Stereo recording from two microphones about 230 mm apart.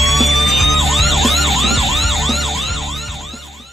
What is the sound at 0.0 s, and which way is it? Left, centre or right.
Emergency vehicle, centre.